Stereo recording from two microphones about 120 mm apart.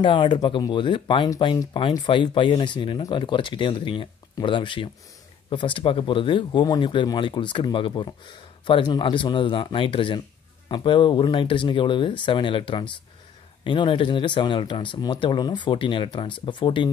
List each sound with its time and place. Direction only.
0.0 s speech: 40° left (ahead or behind)